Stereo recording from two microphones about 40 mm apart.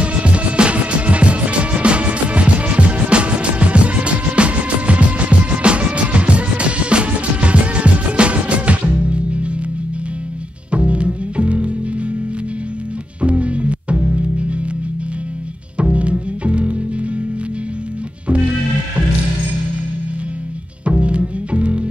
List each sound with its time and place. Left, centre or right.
0.0 s music: right
10.7 s music: right
13.2 s music: right
15.8 s music: right
20.8 s music: right